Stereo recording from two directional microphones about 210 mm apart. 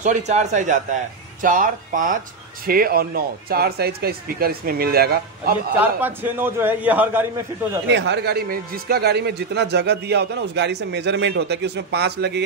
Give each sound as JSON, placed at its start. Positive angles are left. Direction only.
{"t": 0.0, "sound": "a man's voice", "side_deg": -35}
{"t": 5.8, "sound": "a man's voice", "side_deg": -10}
{"t": 7.9, "sound": "a man's voice", "side_deg": -55}